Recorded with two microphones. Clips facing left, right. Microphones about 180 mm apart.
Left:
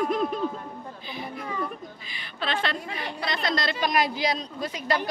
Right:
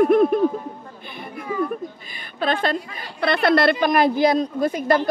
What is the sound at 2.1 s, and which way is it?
Speech, 50° right (ahead or behind).